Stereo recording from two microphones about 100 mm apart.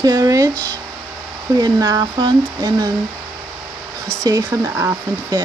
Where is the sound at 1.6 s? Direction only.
40° right (ahead or behind).